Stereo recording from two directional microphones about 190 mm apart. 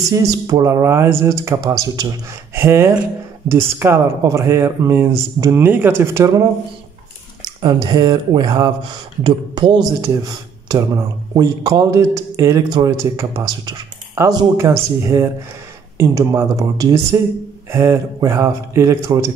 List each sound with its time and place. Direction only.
0.1 s speech: 20° right (ahead or behind)
7.6 s speech: 20° right (ahead or behind)